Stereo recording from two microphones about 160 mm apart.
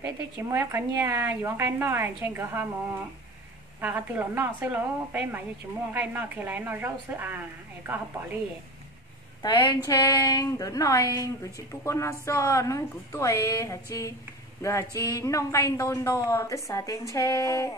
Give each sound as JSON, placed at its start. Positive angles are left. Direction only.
{"t": 0.0, "sound": "speech", "side_deg": -15}
{"t": 3.8, "sound": "speech", "side_deg": -10}
{"t": 9.4, "sound": "a woman's voice", "side_deg": 30}